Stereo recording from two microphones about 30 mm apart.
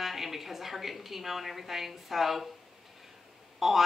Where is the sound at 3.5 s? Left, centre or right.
Centre.